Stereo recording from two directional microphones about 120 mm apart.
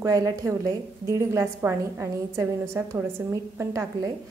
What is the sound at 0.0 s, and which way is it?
A woman's voice, 30° right (ahead or behind).